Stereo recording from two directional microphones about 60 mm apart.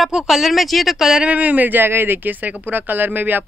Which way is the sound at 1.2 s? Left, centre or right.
Right.